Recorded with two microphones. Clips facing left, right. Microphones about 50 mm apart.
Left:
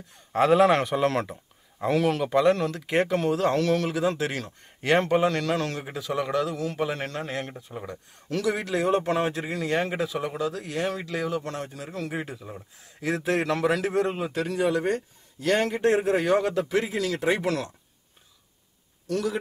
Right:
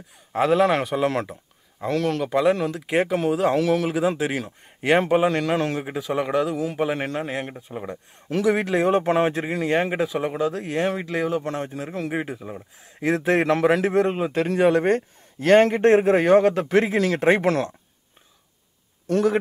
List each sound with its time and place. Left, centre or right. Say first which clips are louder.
0.3 s a man's voice: even; centre; by 17.7 s right
19.0 s a man's voice: right 7 dB; right